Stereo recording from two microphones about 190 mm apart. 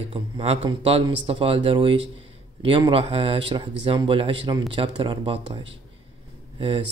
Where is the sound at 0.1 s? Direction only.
30° right (ahead or behind).